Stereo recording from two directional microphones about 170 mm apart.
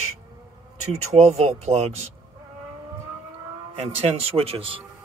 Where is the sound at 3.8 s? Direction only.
35° right (ahead or behind).